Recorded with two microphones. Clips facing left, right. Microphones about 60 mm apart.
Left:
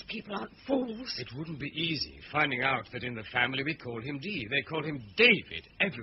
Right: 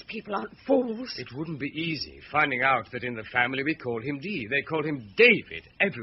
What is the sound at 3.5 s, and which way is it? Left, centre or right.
Speech, right.